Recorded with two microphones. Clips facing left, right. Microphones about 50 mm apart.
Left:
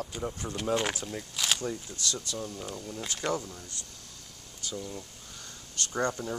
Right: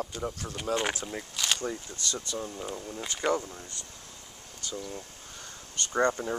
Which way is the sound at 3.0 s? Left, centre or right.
Centre.